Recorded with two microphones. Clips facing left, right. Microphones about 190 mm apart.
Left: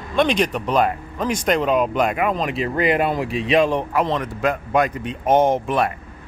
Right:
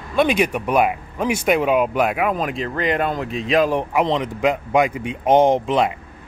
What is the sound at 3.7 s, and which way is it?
Speech, 15° right (ahead or behind).